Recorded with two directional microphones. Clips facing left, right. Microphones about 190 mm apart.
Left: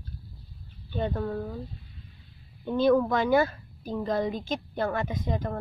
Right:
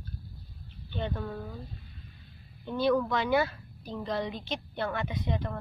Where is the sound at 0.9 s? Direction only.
45° left (ahead or behind).